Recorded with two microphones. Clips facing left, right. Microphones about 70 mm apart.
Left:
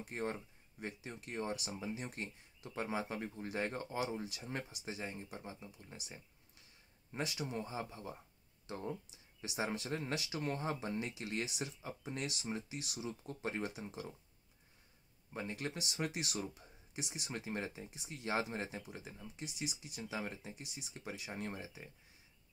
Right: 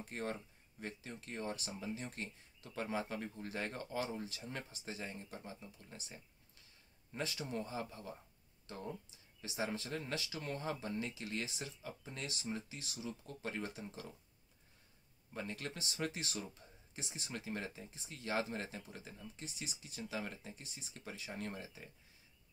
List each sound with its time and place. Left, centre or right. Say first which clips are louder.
0.1 s speech: left 2 dB; centre
4.5 s speech: left 3 dB; left
4.7 s speech: left 2 dB; centre
7.3 s speech: left 1 dB; centre
9.4 s speech: left 1 dB; left
15.3 s speech: left 2 dB; centre
16.6 s a sound: even; left
16.9 s speech: left 4 dB; centre
17.3 s speech: left 1 dB; left